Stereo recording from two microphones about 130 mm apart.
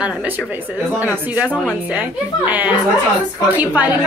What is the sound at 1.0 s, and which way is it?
A woman's voice, 10° right (ahead or behind).